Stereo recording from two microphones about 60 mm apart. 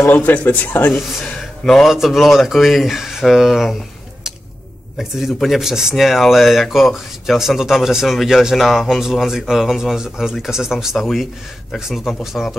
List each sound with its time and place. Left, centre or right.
0.1 s speech: left
1.6 s speech: centre
4.9 s speech: centre